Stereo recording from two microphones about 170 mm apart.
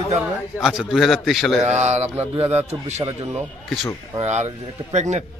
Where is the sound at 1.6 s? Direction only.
40° right (ahead or behind).